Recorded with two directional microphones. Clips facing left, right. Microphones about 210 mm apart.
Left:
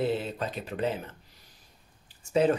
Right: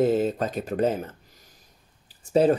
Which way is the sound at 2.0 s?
35° right (ahead or behind).